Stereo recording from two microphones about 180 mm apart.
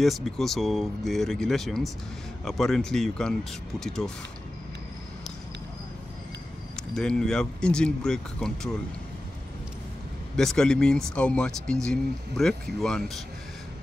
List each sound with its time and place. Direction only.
0.0 s speech: centre (ahead or behind)
6.9 s speech: 5° left (ahead or behind)
10.3 s speech: 5° left (ahead or behind)